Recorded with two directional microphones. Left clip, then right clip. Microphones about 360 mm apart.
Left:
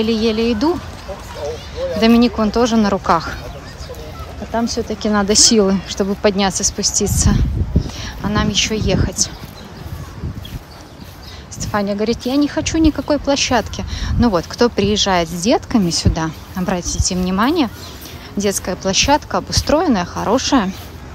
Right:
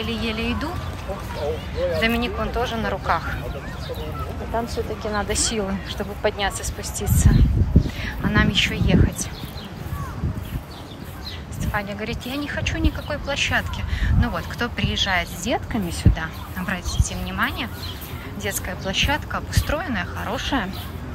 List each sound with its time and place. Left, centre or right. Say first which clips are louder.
0.0 s a woman's voice: left 9 dB; centre
2.0 s a woman's voice: left 12 dB; centre
4.6 s a woman's voice: left 7 dB; centre
11.6 s a woman's voice: left 9 dB; centre